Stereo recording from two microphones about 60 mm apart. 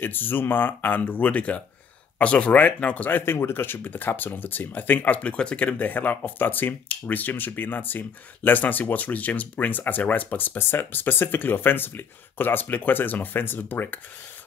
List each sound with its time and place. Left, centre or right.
0.0 s speech: left